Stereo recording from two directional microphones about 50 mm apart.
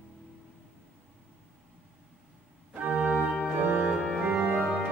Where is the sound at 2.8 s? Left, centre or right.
Right.